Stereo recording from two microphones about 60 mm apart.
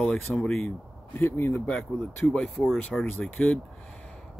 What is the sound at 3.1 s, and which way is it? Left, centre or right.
Speech, left.